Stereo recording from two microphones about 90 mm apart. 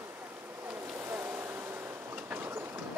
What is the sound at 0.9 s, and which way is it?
Train, 25° right (ahead or behind).